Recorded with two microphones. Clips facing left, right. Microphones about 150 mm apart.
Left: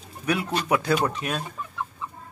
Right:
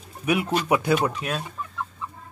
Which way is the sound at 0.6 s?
15° right (ahead or behind).